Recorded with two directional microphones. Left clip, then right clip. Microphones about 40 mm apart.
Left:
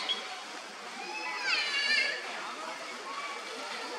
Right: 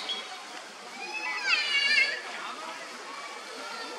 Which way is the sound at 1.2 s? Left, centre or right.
Right.